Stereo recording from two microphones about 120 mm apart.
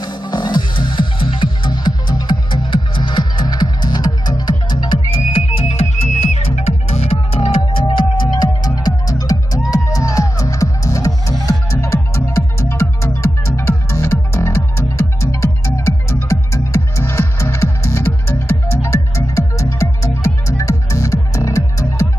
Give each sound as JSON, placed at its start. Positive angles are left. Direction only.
{"t": 0.0, "sound": "music", "side_deg": 35}
{"t": 5.7, "sound": "music", "side_deg": 60}
{"t": 7.9, "sound": "music", "side_deg": 40}